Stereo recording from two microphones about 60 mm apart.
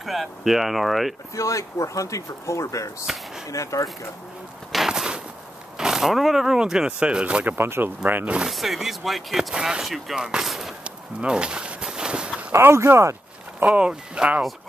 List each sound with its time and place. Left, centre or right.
0.0 s speech: centre
1.3 s speech: left
3.1 s speech: centre
3.4 s speech: left
4.7 s walk: centre
5.8 s speech: centre
7.4 s speech: right
8.5 s speech: centre
9.8 s speech: centre
10.1 s speech: centre
10.8 s a sound: centre
12.5 s speech: right
13.6 s speech: right